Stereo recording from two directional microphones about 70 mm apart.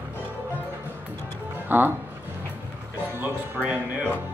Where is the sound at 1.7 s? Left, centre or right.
Right.